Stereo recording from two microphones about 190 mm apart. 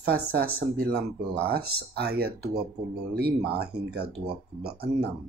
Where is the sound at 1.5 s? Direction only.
55° right (ahead or behind).